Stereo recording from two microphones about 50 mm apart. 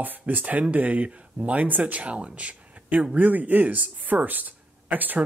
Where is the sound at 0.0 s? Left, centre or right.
Right.